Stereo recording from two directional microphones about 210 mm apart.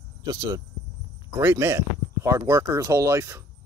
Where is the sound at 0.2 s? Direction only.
20° right (ahead or behind).